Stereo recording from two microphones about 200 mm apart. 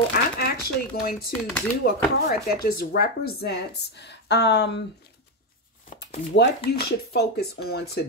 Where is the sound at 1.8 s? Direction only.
50° left (ahead or behind).